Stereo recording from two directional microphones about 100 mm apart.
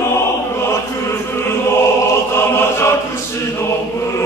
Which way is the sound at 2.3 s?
25° left (ahead or behind).